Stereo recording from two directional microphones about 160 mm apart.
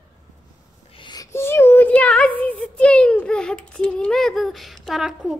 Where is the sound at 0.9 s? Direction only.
30° left (ahead or behind).